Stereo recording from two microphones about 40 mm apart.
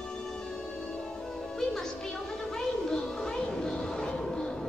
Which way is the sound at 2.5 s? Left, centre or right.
Centre.